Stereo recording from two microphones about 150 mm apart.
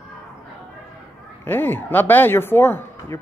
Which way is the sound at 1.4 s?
15° left (ahead or behind).